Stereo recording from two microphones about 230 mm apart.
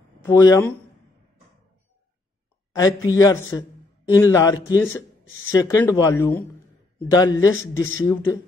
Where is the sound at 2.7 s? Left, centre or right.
Centre.